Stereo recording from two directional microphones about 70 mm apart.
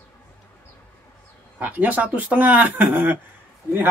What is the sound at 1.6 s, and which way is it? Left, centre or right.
Speech, right.